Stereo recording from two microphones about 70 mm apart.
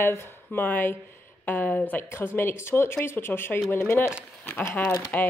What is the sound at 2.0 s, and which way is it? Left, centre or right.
A woman's voice, left.